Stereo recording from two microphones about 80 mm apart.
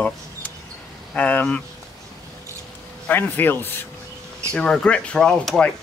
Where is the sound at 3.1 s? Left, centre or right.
Left.